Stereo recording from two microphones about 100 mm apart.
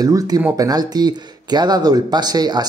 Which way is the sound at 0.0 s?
40° right (ahead or behind).